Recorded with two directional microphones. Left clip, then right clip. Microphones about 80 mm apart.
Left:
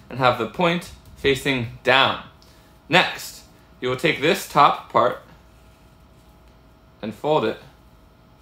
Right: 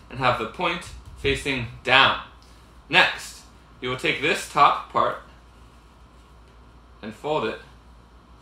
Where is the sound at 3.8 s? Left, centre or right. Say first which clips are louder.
Left 3 dB; left.